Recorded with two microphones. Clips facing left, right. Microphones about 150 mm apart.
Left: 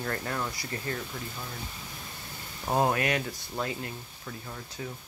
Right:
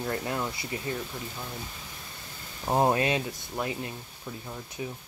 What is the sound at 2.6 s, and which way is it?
Speech, 20° right (ahead or behind).